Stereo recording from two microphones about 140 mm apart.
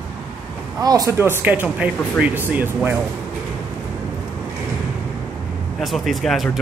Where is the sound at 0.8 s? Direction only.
25° right (ahead or behind).